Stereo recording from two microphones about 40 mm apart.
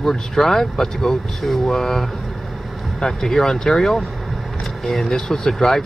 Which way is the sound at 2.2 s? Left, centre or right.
Centre.